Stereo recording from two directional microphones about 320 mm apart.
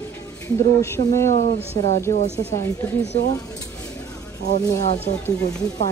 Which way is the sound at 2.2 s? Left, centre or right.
Centre.